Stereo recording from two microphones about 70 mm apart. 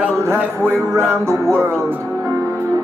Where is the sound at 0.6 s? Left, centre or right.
Centre.